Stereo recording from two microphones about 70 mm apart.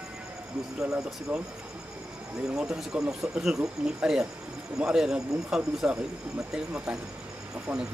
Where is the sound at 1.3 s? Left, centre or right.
Centre.